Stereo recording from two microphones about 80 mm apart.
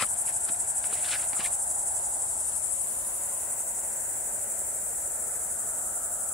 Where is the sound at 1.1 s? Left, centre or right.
Centre.